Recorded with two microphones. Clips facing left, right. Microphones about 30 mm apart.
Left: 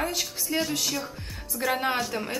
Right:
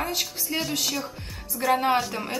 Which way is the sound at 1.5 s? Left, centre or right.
Centre.